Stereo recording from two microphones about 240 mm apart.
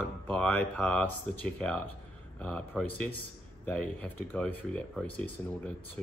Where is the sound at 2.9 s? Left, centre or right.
Right.